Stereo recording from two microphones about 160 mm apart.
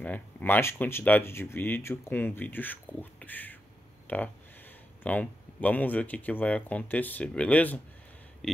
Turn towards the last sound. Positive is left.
turn(degrees=10)  # may be behind; listen again after turning